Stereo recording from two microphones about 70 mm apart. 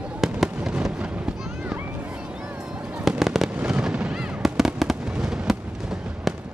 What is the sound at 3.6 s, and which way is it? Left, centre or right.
Fireworks, centre.